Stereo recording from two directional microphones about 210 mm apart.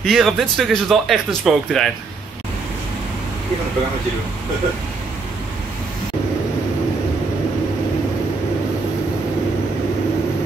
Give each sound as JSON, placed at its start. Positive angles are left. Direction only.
{"t": 0.0, "sound": "speech", "side_deg": 0}